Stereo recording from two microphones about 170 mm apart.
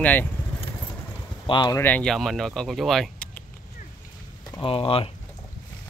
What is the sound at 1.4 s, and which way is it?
Speech, 25° left (ahead or behind).